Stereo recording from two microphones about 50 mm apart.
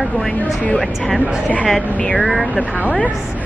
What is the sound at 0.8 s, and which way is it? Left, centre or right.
Speech, centre.